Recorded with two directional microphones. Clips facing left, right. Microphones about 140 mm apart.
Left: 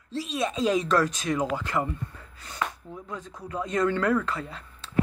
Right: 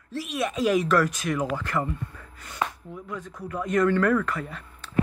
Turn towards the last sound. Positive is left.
turn(degrees=25)  # may be behind; listen again after turning